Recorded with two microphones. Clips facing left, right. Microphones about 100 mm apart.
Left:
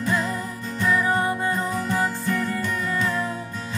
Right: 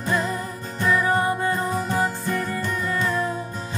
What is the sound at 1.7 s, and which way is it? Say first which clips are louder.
Music: right 1 dB; 30° right (ahead or behind).